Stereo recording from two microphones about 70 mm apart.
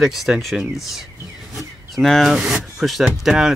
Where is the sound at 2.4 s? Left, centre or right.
Centre.